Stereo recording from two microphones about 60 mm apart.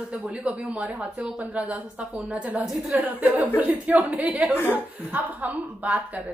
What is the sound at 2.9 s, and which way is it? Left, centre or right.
Speech, right.